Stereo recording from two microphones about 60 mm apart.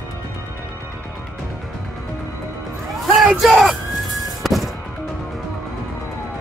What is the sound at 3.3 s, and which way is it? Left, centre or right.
Music, centre.